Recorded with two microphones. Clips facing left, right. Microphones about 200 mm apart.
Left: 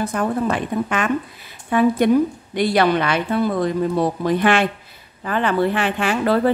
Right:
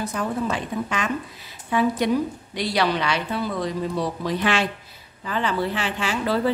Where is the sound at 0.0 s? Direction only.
55° left (ahead or behind).